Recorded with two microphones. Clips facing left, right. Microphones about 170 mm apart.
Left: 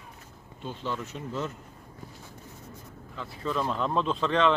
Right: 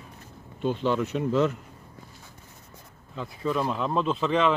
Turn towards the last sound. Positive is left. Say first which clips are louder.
# right 1 dB
turn(degrees=-5)  # may be behind; listen again after turning